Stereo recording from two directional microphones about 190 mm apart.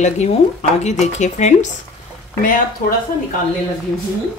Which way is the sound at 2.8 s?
45° left (ahead or behind).